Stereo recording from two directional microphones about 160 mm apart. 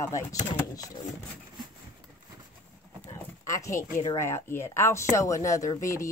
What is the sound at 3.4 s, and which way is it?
Speech, 20° left (ahead or behind).